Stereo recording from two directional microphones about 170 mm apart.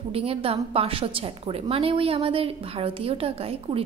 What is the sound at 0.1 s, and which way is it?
A woman's voice, 35° right (ahead or behind).